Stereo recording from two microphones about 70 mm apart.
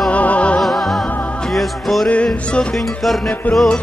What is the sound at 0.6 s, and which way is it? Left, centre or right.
Music, centre.